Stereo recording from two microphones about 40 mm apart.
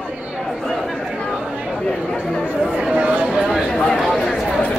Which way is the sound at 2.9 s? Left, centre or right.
Right.